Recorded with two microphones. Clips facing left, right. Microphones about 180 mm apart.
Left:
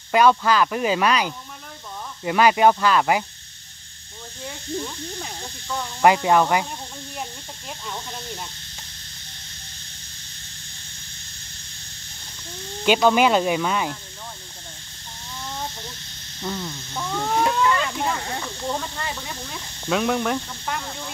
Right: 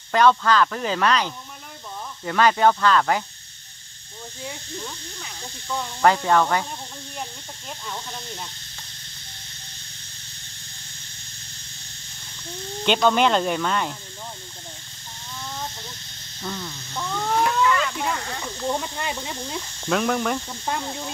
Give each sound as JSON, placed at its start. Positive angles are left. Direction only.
{"t": 0.1, "sound": "speech", "side_deg": 10}
{"t": 5.9, "sound": "speech", "side_deg": 10}
{"t": 7.8, "sound": "speech", "side_deg": 5}
{"t": 12.8, "sound": "speech", "side_deg": 5}
{"t": 16.4, "sound": "speech", "side_deg": 10}
{"t": 17.4, "sound": "a sound", "side_deg": 25}
{"t": 18.4, "sound": "speech", "side_deg": -10}
{"t": 19.8, "sound": "speech", "side_deg": 5}
{"t": 20.6, "sound": "snake", "side_deg": -20}